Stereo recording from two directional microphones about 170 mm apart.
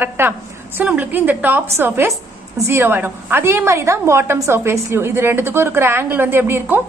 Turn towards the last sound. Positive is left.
turn(degrees=-15)  # may be behind; listen again after turning